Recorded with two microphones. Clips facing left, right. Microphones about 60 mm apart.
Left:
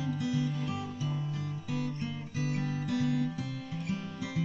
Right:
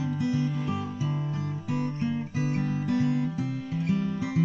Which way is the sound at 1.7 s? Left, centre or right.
Right.